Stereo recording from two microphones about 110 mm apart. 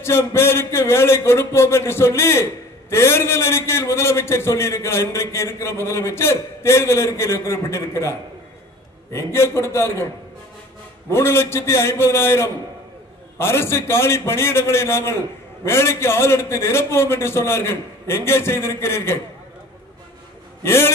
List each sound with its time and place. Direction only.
0.0 s a man's voice: 25° left (ahead or behind)
11.1 s a man's voice: 25° left (ahead or behind)
20.6 s a man's voice: 25° left (ahead or behind)